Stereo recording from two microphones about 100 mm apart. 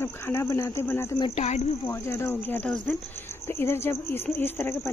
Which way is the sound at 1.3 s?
90° left.